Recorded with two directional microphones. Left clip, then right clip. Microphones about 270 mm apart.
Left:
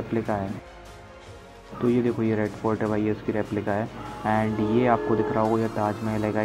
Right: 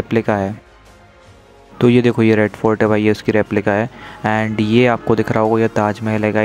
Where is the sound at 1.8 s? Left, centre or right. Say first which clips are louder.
Right 11 dB; right.